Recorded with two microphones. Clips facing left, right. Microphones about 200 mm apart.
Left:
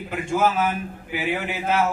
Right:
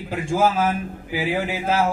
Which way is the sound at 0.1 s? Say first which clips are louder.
Right 2 dB; 30° right (ahead or behind).